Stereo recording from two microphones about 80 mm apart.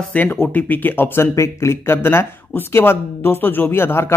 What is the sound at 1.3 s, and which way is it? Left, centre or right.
Speech, left.